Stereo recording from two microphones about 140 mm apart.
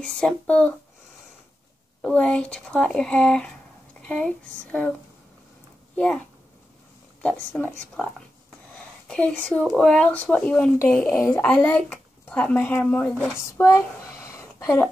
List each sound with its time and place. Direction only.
0.0 s speech: 5° left (ahead or behind)
2.0 s speech: 10° left (ahead or behind)
5.9 s speech: 10° left (ahead or behind)
7.2 s speech: 10° left (ahead or behind)
8.7 s speech: 5° left (ahead or behind)
13.6 s a sound: 20° left (ahead or behind)